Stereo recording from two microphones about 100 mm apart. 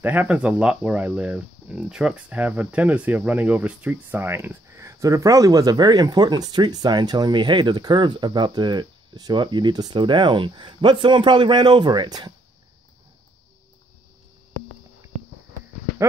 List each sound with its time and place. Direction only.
0.0 s speech: 15° right (ahead or behind); by 12.4 s 45° right (ahead or behind)